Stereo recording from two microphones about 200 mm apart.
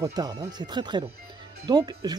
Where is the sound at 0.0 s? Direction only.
20° right (ahead or behind).